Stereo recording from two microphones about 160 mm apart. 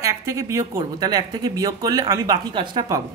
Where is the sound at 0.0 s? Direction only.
20° right (ahead or behind).